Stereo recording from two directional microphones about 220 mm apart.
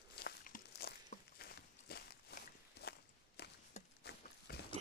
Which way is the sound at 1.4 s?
45° left (ahead or behind).